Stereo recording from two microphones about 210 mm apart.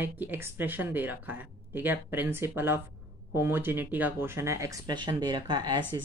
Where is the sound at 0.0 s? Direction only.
10° right (ahead or behind).